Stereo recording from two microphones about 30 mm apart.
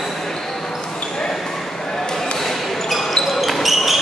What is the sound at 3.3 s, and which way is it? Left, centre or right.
Basketball bounce, centre.